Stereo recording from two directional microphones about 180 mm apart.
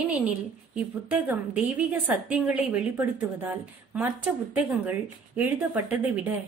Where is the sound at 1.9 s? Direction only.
5° right (ahead or behind).